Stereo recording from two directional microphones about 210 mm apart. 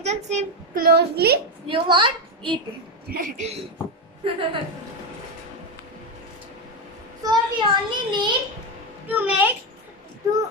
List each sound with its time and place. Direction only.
0.0 s speech: 35° right (ahead or behind)
0.9 s a woman's voice: 50° right (ahead or behind)
1.7 s a child's voice: 20° right (ahead or behind)
3.2 s a man's voice: 40° right (ahead or behind)
4.2 s a child's voice: 25° right (ahead or behind)
7.2 s a child's voice: 20° right (ahead or behind)
9.1 s a child's voice: 5° right (ahead or behind)